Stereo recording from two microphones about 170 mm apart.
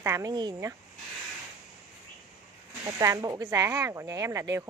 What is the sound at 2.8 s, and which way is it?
Speech, 20° right (ahead or behind).